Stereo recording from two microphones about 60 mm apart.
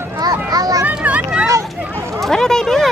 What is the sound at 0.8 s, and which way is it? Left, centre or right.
Vehicle, right.